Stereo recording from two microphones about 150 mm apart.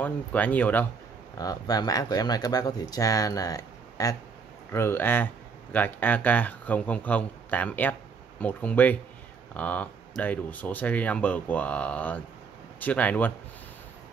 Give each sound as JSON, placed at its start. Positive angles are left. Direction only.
{"t": 0.0, "sound": "speech", "side_deg": 10}
{"t": 1.4, "sound": "speech", "side_deg": 25}